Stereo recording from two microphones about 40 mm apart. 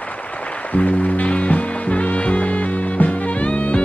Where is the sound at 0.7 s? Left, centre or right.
Left.